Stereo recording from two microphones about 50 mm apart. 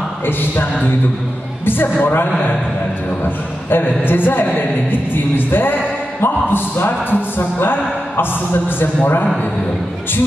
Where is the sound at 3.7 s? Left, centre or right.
Left.